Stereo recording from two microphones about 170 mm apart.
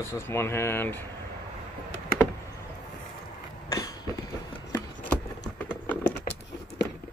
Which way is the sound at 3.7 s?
20° left (ahead or behind).